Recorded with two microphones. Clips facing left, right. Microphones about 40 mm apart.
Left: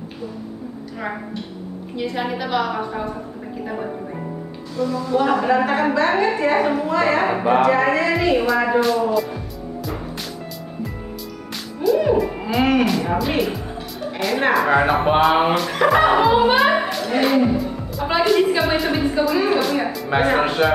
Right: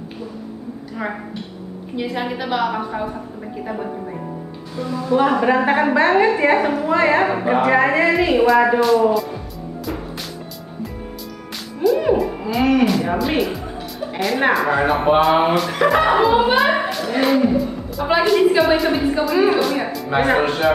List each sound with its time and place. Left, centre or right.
2.0 s a woman's voice: centre
4.7 s a woman's voice: centre
8.4 s speech: centre
11.5 s music: centre
12.4 s speech: centre